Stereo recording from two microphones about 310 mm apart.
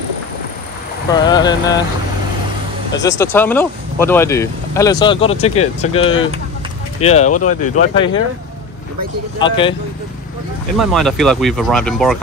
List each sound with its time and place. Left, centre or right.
1.1 s speech: centre
3.0 s speech: centre
9.4 s speech: centre
10.8 s speech: centre